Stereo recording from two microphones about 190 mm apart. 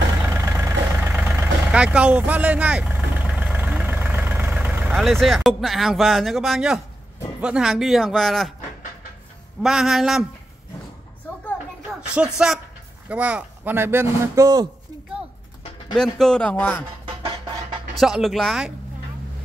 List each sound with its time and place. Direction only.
0.3 s vehicle: 15° right (ahead or behind)
7.4 s speech: 5° right (ahead or behind)
9.6 s speech: centre (ahead or behind)
11.9 s a sound: 5° right (ahead or behind)
13.1 s speech: 5° right (ahead or behind)
15.9 s speech: centre (ahead or behind)
17.0 s music: 25° right (ahead or behind)
17.9 s speech: centre (ahead or behind)